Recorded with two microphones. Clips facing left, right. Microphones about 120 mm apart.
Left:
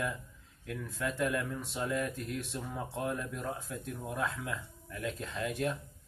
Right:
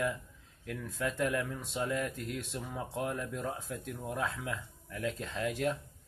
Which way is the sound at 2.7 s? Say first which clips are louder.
Even; 25° right (ahead or behind).